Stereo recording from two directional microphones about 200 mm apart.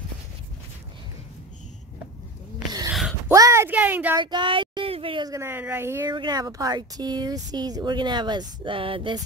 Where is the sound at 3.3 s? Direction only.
15° right (ahead or behind).